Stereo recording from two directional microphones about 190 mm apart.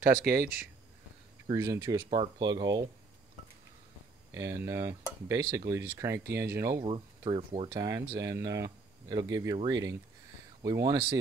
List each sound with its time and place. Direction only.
0.1 s speech: 55° right (ahead or behind)
1.5 s speech: 20° right (ahead or behind)
4.3 s speech: 15° right (ahead or behind)
6.8 s speech: 30° right (ahead or behind)